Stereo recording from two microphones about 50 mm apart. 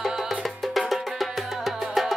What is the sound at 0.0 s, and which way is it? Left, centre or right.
Music, centre.